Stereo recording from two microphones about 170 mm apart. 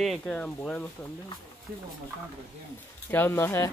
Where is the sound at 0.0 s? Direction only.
5° left (ahead or behind).